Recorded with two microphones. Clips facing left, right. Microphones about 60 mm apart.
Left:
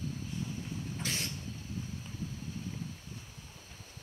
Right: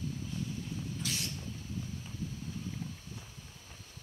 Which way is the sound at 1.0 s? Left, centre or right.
Left.